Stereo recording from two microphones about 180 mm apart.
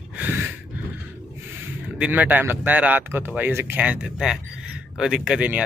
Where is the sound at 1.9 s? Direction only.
5° right (ahead or behind).